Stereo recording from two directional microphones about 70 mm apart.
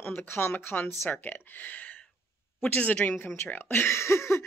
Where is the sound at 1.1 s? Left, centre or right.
Left.